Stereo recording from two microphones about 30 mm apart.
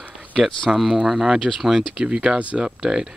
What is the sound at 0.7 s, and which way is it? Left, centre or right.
Speech, centre.